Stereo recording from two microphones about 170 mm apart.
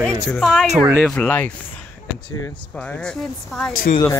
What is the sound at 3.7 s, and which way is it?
Speech, 55° left (ahead or behind).